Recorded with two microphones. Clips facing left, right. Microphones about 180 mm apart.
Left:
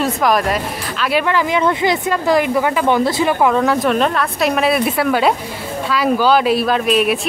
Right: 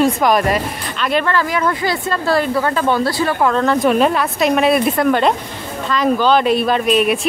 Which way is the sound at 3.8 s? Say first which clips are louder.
Right 2 dB; 5° right (ahead or behind).